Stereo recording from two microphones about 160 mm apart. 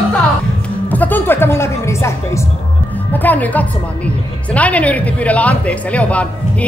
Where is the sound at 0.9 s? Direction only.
10° left (ahead or behind).